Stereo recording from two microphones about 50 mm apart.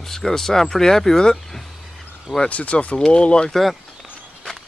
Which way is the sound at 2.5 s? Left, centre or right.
Left.